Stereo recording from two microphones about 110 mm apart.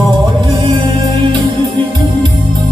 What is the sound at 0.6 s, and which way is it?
Music, 60° right (ahead or behind).